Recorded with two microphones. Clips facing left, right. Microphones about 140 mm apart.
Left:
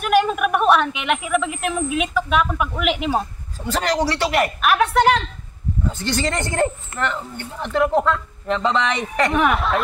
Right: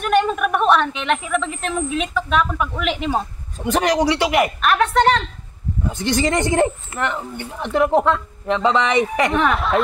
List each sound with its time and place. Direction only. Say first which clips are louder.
0.0 s a woman's voice: even; 5° left (ahead or behind)
3.5 s speech: right 3 dB; 15° right (ahead or behind)
4.6 s a woman's voice: even; 5° left (ahead or behind)
5.9 s speech: right 4 dB; 15° right (ahead or behind)
9.3 s a woman's voice: even; centre (ahead or behind)